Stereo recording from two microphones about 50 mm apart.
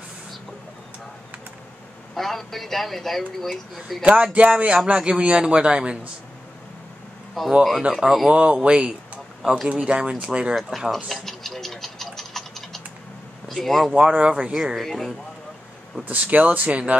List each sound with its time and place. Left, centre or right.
2.1 s speech: centre
4.0 s speech: right
7.4 s speech: centre
8.3 s a man's voice: right
9.4 s speech: centre
10.7 s speech: centre
11.1 s scratch: centre
13.5 s speech: centre
13.9 s speech: centre
14.8 s speech: centre
16.1 s speech: right